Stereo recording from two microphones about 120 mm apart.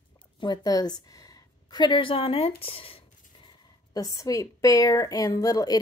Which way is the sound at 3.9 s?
30° left (ahead or behind).